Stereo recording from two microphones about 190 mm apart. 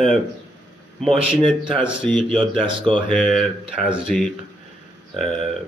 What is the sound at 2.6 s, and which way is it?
Speech, 25° right (ahead or behind).